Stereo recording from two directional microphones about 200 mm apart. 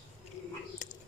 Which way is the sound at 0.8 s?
40° left (ahead or behind).